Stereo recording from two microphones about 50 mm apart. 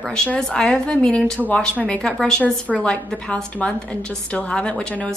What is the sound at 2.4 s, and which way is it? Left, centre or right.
A woman's voice, left.